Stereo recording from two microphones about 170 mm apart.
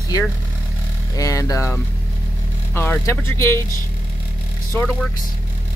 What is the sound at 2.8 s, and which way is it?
Speech, 15° left (ahead or behind).